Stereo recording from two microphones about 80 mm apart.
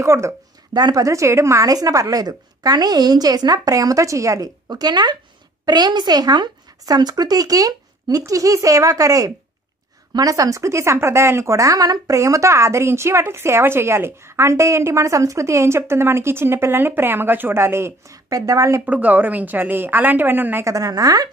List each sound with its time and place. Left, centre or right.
0.0 s a woman's voice: right
0.7 s speech: right
1.0 s a woman's voice: right
4.6 s a woman's voice: right
18.1 s a woman's voice: right
18.9 s a woman's voice: centre
20.6 s a woman's voice: right